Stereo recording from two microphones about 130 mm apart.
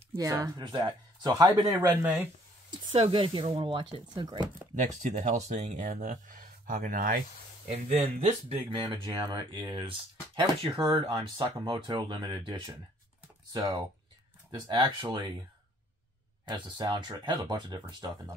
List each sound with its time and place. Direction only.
0.1 s speech: 25° right (ahead or behind)
1.9 s speech: 15° right (ahead or behind)
2.9 s speech: 40° right (ahead or behind)
5.3 s speech: 70° right (ahead or behind); by 7.2 s 90° right
7.7 s speech: 55° right (ahead or behind)
8.7 s speech: 40° right (ahead or behind)
16.4 s speech: 35° right (ahead or behind)